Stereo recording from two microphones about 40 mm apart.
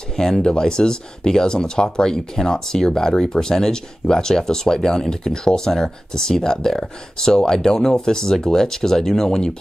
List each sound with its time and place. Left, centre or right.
0.1 s speech: centre